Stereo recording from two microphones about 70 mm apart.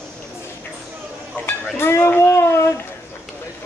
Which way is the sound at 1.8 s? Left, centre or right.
Left.